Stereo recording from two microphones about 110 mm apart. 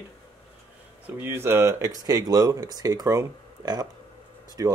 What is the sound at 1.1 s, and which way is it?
Speech, 20° right (ahead or behind).